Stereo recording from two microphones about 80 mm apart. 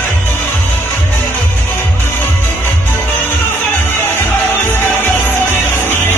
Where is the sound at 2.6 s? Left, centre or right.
Left.